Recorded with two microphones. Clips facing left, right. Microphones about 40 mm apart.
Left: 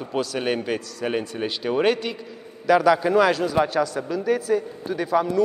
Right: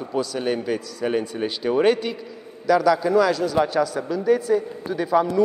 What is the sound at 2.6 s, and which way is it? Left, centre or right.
Speech, left.